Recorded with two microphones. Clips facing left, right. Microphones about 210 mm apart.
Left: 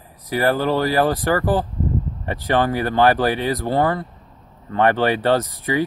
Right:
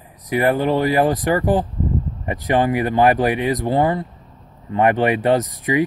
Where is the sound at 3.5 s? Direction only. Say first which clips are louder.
Right 1 dB; 15° right (ahead or behind).